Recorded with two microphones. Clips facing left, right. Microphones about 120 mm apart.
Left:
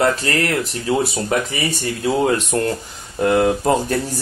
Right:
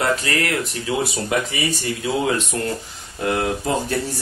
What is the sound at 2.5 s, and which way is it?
Speech, 45° left (ahead or behind).